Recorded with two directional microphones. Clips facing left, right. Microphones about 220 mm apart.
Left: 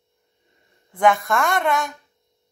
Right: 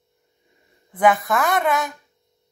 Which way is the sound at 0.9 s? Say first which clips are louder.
Even; 5° right (ahead or behind).